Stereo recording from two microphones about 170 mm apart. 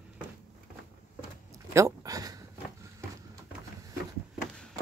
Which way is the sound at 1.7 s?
20° right (ahead or behind).